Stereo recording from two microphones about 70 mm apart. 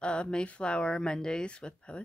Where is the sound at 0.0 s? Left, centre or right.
Centre.